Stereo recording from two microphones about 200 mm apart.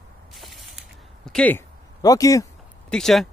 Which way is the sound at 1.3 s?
5° left (ahead or behind).